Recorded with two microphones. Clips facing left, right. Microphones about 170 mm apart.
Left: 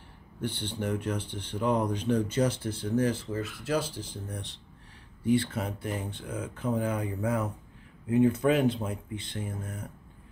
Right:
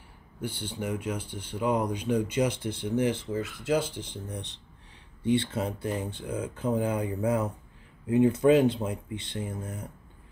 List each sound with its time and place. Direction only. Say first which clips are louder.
0.4 s speech: left 1 dB; 10° right (ahead or behind)